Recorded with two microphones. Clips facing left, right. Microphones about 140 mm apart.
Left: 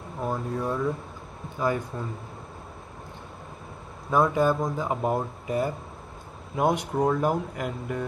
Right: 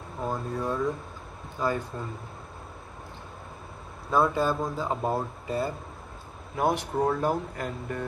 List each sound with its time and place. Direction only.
0.2 s speech: 10° left (ahead or behind)
4.1 s speech: 15° left (ahead or behind)